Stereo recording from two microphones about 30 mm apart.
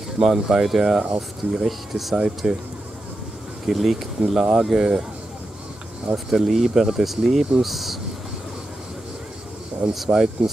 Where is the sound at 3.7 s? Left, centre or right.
Centre.